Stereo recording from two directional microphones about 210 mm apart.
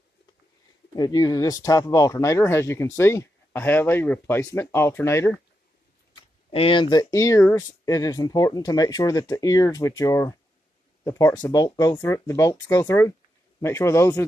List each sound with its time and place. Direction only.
0.9 s speech: 20° left (ahead or behind)
6.5 s speech: 25° left (ahead or behind)